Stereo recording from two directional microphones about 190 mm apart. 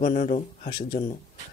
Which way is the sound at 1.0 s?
50° left (ahead or behind).